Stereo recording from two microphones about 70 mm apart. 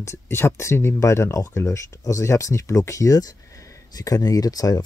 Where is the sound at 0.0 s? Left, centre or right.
Left.